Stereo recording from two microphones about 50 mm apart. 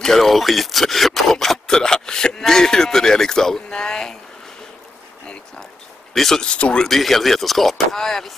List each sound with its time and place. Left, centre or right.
0.0 s speech: centre
6.1 s speech: centre
6.4 s speech: left
6.9 s speech: centre